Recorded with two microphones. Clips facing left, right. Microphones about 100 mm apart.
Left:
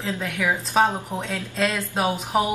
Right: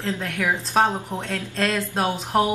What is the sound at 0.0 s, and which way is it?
A woman's voice, 5° left (ahead or behind).